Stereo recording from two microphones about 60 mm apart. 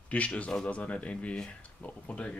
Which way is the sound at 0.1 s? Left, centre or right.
Left.